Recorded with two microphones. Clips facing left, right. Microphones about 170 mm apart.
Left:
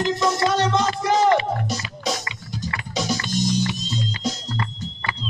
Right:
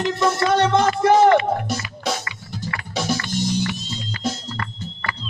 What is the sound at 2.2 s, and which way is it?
Music, 20° left (ahead or behind).